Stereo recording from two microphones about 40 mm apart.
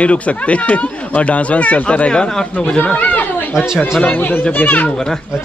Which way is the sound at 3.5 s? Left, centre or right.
Centre.